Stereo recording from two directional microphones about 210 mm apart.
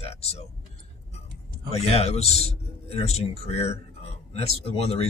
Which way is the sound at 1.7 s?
30° left (ahead or behind).